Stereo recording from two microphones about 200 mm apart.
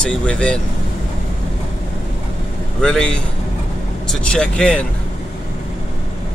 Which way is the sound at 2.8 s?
5° left (ahead or behind).